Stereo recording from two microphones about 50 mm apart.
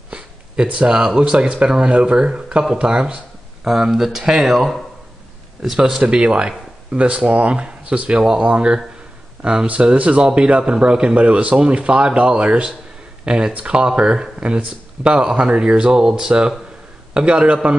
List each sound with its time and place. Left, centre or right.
0.8 s speech: centre
4.6 s speech: centre
6.0 s speech: right